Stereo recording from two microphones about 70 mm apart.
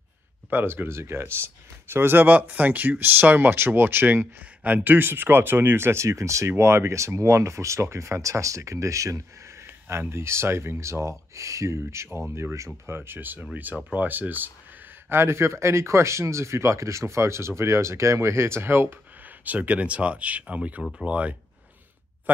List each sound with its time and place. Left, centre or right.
0.5 s speech: right
9.7 s speech: right
15.0 s speech: right; by 21.4 s centre